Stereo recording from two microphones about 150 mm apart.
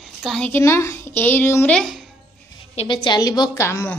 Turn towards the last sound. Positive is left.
turn(degrees=20)  # may be behind; listen again after turning